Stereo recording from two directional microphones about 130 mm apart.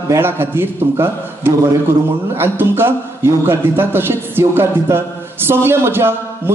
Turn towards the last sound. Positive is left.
turn(degrees=-20)  # may be behind; listen again after turning